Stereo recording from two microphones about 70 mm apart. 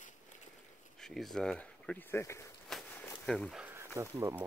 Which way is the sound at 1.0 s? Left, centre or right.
Centre.